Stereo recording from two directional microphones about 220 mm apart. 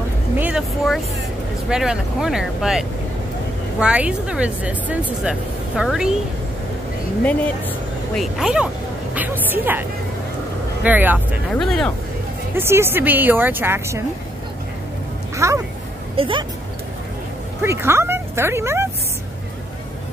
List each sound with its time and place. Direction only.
0.4 s speech: 5° right (ahead or behind)
3.8 s speech: 5° right (ahead or behind)
8.2 s speech: centre (ahead or behind)
12.5 s speech: 10° right (ahead or behind)
15.3 s speech: 15° right (ahead or behind)
17.6 s speech: 10° right (ahead or behind)